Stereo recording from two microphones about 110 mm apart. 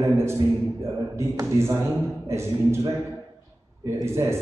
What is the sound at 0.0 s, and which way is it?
A man's voice, 25° right (ahead or behind).